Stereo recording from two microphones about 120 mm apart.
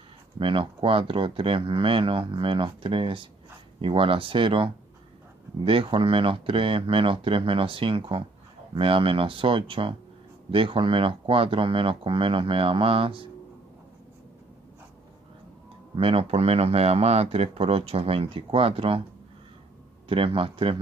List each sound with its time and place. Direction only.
0.4 s speech: 45° right (ahead or behind)
16.0 s speech: 50° right (ahead or behind)
20.1 s speech: 50° right (ahead or behind)